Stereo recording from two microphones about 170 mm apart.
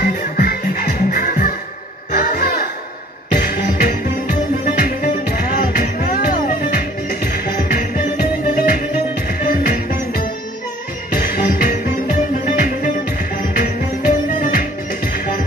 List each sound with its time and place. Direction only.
0.0 s music: 60° left (ahead or behind)